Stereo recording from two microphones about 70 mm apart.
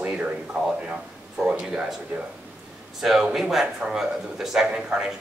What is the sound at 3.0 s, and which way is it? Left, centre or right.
Speech, centre.